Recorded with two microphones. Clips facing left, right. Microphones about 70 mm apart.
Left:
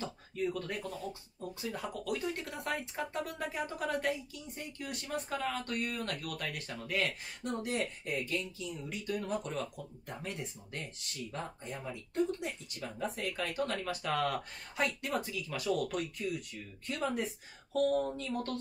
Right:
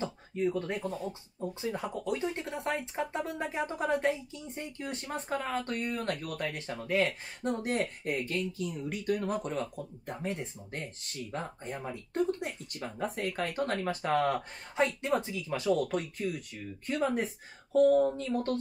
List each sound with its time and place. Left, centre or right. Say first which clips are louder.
0.0 s speech: right 5 dB; right
7.6 s speech: right 4 dB; right